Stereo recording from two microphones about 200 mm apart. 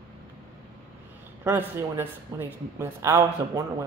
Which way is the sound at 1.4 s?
10° right (ahead or behind).